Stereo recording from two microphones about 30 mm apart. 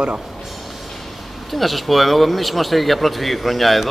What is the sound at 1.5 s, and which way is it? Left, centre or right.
A man's voice, centre.